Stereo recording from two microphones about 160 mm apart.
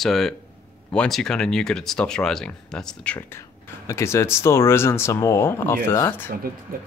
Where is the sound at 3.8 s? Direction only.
15° left (ahead or behind).